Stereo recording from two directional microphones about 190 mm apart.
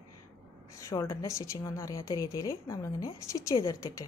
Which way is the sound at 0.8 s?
15° left (ahead or behind).